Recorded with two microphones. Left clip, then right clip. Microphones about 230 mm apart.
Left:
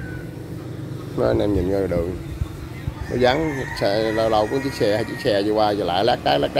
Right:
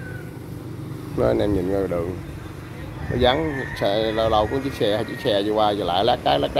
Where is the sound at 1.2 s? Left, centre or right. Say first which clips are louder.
Left 1 dB; centre.